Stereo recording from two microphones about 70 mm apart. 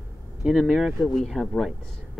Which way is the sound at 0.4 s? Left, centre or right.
Centre.